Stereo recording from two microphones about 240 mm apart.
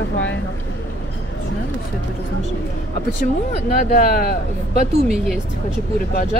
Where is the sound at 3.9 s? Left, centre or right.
Left.